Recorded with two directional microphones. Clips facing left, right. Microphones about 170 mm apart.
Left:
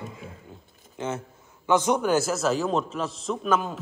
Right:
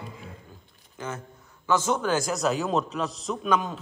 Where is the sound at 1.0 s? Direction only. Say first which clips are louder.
Left 4 dB; 25° left (ahead or behind).